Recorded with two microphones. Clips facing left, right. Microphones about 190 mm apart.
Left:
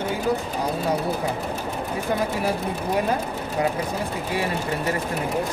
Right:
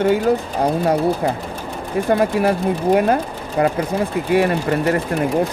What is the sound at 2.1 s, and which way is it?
Speech, 60° right (ahead or behind).